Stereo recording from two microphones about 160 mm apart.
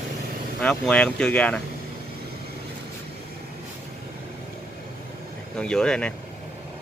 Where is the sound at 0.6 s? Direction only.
5° left (ahead or behind).